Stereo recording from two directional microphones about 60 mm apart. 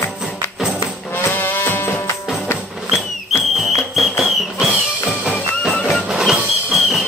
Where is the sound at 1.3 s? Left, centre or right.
Left.